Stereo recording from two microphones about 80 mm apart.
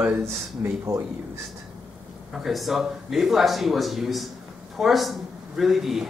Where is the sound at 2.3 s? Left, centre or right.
Centre.